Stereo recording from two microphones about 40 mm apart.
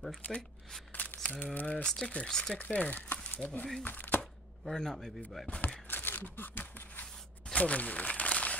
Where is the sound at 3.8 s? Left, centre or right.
Left.